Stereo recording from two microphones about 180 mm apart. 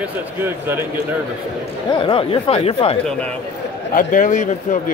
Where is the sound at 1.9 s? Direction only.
25° left (ahead or behind).